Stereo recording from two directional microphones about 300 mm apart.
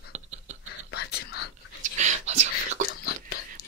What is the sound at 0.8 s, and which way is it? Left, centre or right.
Whispering, left.